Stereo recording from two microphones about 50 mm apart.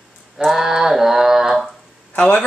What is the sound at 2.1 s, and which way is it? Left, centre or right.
Speech, left.